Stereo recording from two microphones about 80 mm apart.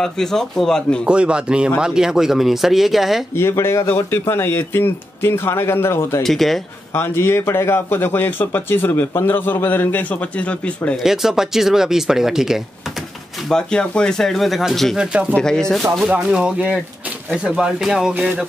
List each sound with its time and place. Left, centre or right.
0.0 s speech: centre
1.0 s speech: centre
3.3 s speech: left
6.2 s speech: centre
6.9 s a man's voice: left; by 11.0 s centre
11.0 s speech: centre
13.5 s speech: centre
16.0 s speech: centre